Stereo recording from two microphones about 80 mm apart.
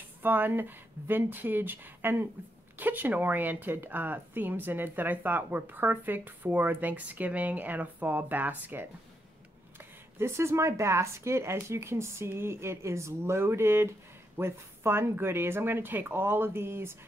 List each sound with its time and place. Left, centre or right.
0.2 s speech: right
10.1 s speech: right